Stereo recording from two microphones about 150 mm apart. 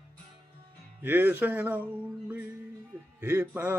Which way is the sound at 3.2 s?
20° right (ahead or behind).